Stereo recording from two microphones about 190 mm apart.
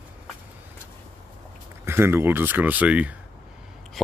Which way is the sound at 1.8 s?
10° right (ahead or behind).